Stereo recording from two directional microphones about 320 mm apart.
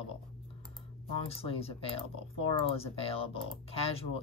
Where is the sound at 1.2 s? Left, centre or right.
Centre.